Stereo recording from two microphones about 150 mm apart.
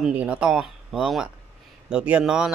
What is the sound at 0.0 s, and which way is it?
Speech, 10° right (ahead or behind).